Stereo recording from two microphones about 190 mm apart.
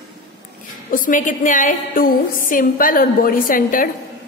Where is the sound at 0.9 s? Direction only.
45° left (ahead or behind).